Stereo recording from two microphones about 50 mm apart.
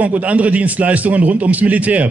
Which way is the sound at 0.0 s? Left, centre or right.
Right.